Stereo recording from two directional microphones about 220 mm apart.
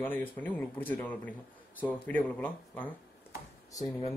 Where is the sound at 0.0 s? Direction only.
10° left (ahead or behind).